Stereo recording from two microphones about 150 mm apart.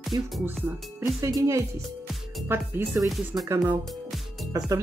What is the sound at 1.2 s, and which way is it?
Speech, 20° right (ahead or behind).